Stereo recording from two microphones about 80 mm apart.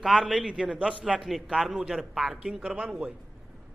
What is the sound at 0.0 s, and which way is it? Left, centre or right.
A man's voice, centre.